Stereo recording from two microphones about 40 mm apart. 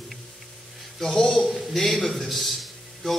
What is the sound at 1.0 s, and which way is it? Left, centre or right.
A man's voice, centre.